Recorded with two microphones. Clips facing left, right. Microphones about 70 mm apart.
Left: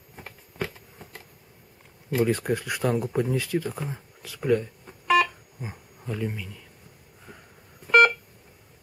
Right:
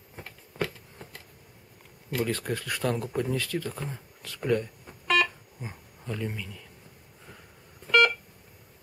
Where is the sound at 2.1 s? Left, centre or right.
Centre.